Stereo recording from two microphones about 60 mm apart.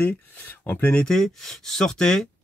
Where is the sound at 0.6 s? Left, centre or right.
Left.